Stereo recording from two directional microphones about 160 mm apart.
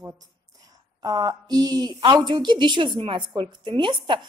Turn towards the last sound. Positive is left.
turn(degrees=-30)  # may be behind; listen again after turning